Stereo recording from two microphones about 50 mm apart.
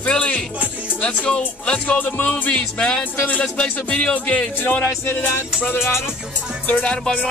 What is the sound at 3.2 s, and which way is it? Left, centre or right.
Music, left.